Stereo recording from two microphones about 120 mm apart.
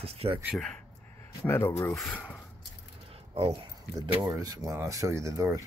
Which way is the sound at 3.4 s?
50° right (ahead or behind).